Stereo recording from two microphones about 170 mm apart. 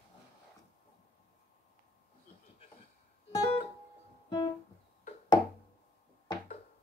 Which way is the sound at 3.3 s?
30° left (ahead or behind).